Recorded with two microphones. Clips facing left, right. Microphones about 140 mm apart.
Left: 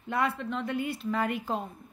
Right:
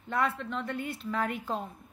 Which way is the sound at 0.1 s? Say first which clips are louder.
Left 1 dB; 5° left (ahead or behind).